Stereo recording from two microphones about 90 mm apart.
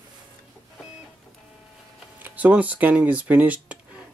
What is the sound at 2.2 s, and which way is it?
Speech, 15° right (ahead or behind).